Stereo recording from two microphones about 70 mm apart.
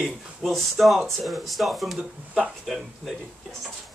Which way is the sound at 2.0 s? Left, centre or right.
Centre.